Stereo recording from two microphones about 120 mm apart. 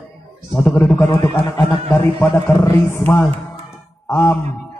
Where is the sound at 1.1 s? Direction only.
30° left (ahead or behind).